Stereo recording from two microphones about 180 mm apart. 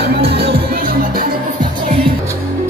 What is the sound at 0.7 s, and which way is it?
Music, 55° right (ahead or behind).